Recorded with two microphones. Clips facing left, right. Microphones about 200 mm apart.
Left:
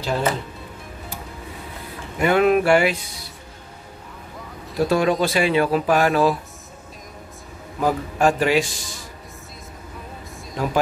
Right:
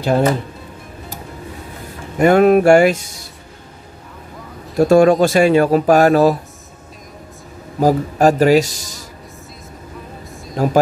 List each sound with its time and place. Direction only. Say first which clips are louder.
0.0 s speech: right 7 dB; 45° right (ahead or behind)
2.1 s speech: right 6 dB; 45° right (ahead or behind)
4.7 s speech: right 8 dB; 45° right (ahead or behind)
7.8 s a man's voice: right 6 dB; 40° right (ahead or behind)
10.5 s speech: right 7 dB; 45° right (ahead or behind)